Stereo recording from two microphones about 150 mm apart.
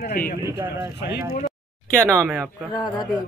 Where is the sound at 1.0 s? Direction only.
75° left (ahead or behind).